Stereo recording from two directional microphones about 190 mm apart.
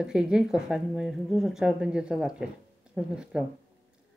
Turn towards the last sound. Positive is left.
turn(degrees=-5)  # may be behind; listen again after turning